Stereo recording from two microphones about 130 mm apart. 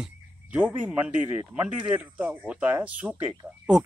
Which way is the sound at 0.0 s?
10° right (ahead or behind).